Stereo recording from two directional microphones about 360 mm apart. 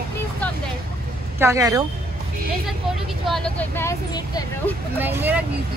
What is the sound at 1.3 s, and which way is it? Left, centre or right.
Speech, centre.